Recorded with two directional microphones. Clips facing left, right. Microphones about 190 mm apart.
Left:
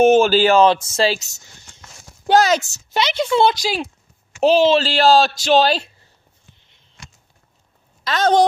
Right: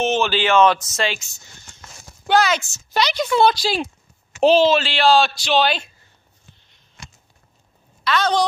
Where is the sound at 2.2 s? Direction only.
40° left (ahead or behind).